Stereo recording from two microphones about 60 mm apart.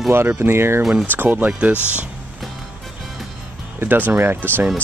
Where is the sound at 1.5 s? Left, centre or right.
Right.